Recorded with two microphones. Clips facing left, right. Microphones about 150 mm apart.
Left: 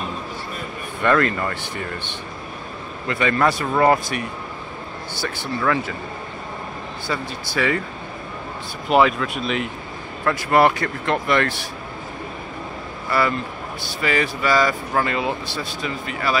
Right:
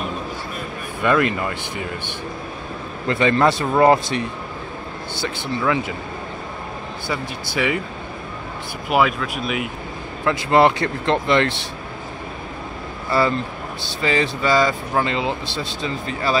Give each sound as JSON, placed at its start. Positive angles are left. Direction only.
{"t": 1.0, "sound": "speech", "side_deg": -10}
{"t": 3.1, "sound": "speech", "side_deg": -30}
{"t": 5.2, "sound": "speech", "side_deg": -15}
{"t": 7.1, "sound": "speech", "side_deg": -15}
{"t": 8.8, "sound": "speech", "side_deg": -5}
{"t": 10.2, "sound": "speech", "side_deg": -20}
{"t": 13.1, "sound": "speech", "side_deg": -25}